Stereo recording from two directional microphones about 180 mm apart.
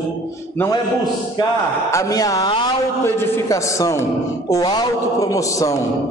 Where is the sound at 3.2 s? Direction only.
15° left (ahead or behind).